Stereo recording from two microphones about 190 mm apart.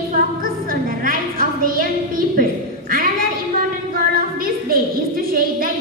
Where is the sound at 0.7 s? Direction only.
50° right (ahead or behind).